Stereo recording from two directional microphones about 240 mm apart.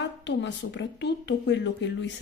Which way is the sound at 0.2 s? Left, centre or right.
Left.